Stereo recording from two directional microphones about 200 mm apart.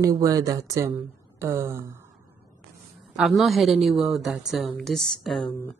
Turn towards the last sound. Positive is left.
turn(degrees=0)  # may be behind; listen again after turning